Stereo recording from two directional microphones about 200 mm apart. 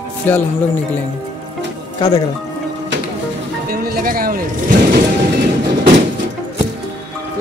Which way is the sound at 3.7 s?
50° right (ahead or behind).